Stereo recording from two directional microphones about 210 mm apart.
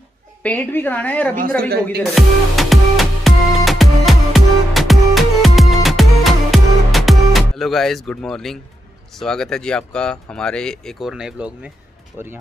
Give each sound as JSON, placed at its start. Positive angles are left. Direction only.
{"t": 0.4, "sound": "a woman's voice", "side_deg": 10}
{"t": 1.7, "sound": "music", "side_deg": -50}
{"t": 2.1, "sound": "music", "side_deg": 0}
{"t": 9.1, "sound": "speech", "side_deg": 0}